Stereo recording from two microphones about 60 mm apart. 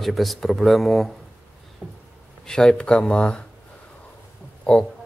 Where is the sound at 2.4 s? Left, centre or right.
Centre.